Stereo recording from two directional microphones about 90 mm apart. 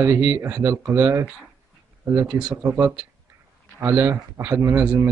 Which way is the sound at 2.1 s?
15° right (ahead or behind).